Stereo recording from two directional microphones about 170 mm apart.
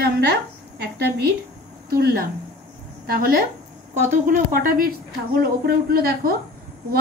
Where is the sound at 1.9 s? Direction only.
65° right (ahead or behind).